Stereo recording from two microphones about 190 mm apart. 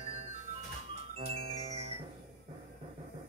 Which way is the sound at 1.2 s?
30° right (ahead or behind).